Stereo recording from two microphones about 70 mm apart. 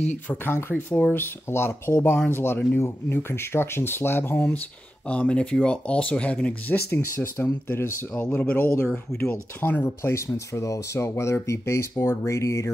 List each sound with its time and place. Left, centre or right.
0.1 s speech: left
6.9 s speech: left
8.4 s speech: left
9.8 s speech: left